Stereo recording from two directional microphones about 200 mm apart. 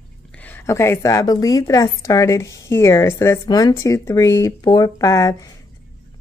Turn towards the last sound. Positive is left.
turn(degrees=15)  # may be behind; listen again after turning